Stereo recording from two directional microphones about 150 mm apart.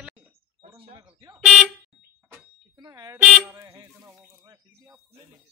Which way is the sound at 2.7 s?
25° right (ahead or behind).